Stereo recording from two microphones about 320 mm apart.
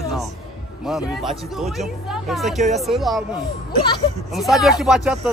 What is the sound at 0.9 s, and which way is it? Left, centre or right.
Speech, centre.